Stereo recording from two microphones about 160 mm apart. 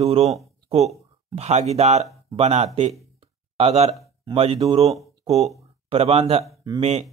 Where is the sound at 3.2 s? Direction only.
35° right (ahead or behind).